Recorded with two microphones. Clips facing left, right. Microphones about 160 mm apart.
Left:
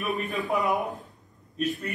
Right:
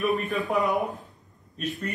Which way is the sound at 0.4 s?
Centre (ahead or behind).